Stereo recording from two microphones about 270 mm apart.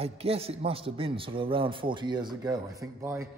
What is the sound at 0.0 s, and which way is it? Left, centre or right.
A man's voice, right.